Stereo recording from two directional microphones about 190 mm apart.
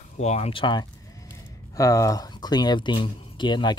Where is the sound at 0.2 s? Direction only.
35° left (ahead or behind).